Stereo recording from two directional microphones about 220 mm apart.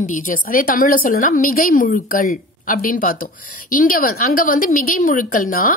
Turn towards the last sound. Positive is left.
turn(degrees=40)  # may be behind; listen again after turning